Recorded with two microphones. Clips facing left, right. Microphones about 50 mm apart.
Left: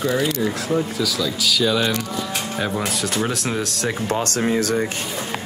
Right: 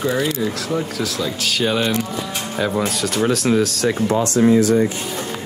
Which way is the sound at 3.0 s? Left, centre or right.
Centre.